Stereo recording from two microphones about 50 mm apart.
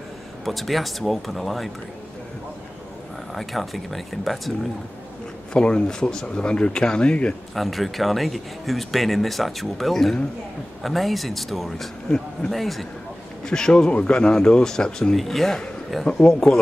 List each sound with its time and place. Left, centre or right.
0.5 s speech: centre
3.3 s speech: centre
5.5 s speech: centre
7.5 s speech: centre
13.5 s speech: centre
15.1 s speech: centre